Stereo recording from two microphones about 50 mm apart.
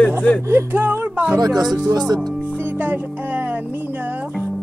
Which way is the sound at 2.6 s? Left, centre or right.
Right.